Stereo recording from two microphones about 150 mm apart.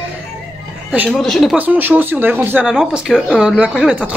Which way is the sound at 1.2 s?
Centre (ahead or behind).